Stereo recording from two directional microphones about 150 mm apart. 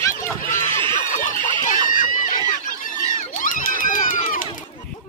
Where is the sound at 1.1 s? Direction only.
55° left (ahead or behind).